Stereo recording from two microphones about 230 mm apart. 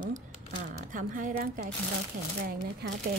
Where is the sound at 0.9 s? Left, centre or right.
Right.